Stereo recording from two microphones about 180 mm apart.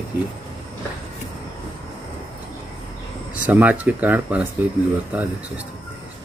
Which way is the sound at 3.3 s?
10° right (ahead or behind).